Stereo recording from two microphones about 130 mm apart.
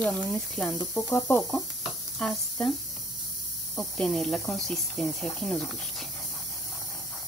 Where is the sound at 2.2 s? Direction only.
Centre (ahead or behind).